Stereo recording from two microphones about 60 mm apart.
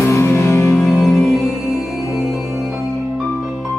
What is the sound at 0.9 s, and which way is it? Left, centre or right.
Music, centre.